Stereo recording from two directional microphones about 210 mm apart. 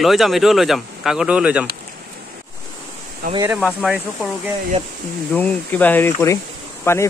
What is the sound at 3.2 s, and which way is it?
Speech, 45° right (ahead or behind).